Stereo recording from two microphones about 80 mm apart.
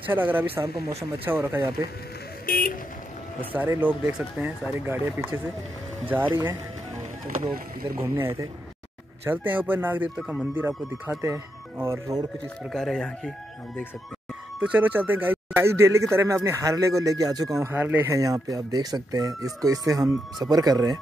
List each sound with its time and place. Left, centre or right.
0.0 s speech: right
3.5 s speech: right
7.9 s speech: right
11.1 s speech: right
12.7 s speech: centre
14.6 s speech: centre; by 17.6 s right
17.7 s speech: right
18.1 s speech: right